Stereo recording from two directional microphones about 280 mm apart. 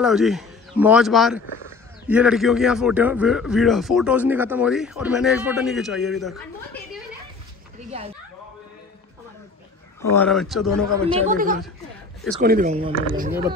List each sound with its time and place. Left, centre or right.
0.0 s a man's voice: centre
10.1 s a man's voice: centre
11.1 s speech: right